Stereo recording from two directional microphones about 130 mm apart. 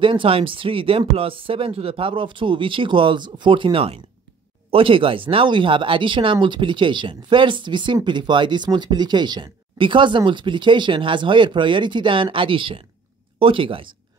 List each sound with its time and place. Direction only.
0.0 s speech: 40° right (ahead or behind)